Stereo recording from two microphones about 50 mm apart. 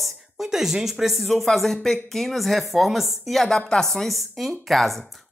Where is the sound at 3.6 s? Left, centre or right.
Centre.